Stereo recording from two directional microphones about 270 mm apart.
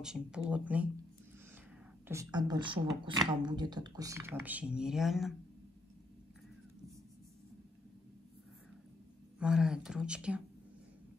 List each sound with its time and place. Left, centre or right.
0.0 s speech: centre
2.0 s speech: centre
9.4 s speech: centre